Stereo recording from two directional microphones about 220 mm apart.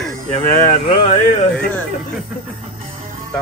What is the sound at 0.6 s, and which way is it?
Speech, 30° left (ahead or behind).